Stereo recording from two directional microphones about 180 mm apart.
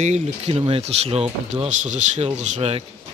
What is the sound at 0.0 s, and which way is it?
Speech, 35° right (ahead or behind).